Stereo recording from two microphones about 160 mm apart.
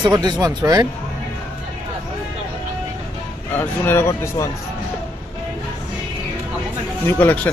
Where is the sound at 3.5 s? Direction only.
15° left (ahead or behind).